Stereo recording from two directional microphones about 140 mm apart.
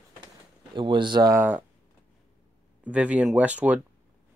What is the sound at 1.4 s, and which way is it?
Speech, 15° right (ahead or behind).